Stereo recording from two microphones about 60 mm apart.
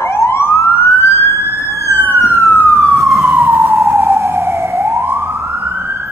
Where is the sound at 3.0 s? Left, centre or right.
Centre.